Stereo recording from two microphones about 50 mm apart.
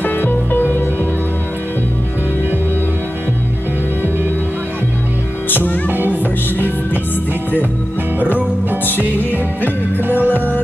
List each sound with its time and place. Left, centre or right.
0.0 s music: left
5.5 s music: left
5.9 s music: right
8.2 s music: right
10.0 s music: right
10.3 s music: left